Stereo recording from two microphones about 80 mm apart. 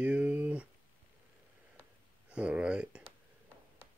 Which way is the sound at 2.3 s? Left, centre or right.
Centre.